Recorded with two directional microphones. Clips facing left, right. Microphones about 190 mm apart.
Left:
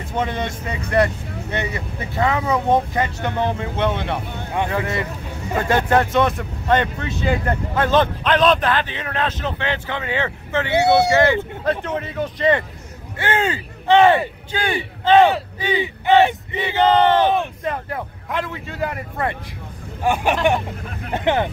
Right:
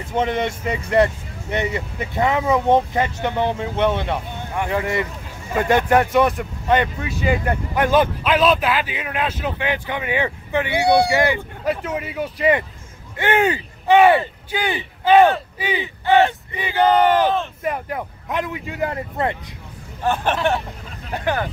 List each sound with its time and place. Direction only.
0.1 s speech: 20° right (ahead or behind)
10.7 s speech: 25° left (ahead or behind)
11.1 s speech: 15° right (ahead or behind)
15.8 s speech: 15° left (ahead or behind)
16.5 s speech: 10° right (ahead or behind)
20.0 s speech: 10° left (ahead or behind)